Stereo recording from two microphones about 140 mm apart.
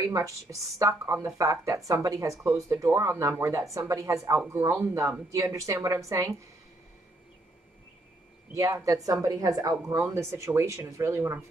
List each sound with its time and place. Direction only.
0.0 s a woman's voice: 25° right (ahead or behind)
8.5 s a woman's voice: 25° right (ahead or behind)